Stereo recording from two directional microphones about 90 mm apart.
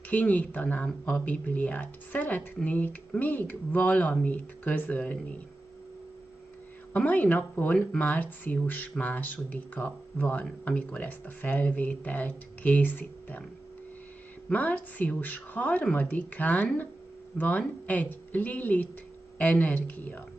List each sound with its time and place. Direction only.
0.1 s speech: 20° left (ahead or behind)
6.9 s speech: 15° left (ahead or behind)
14.5 s speech: 15° left (ahead or behind)